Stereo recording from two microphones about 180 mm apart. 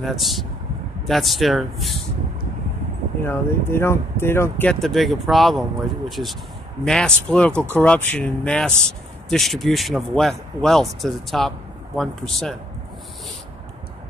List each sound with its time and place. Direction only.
0.0 s speech: centre (ahead or behind)
3.3 s speech: 15° left (ahead or behind)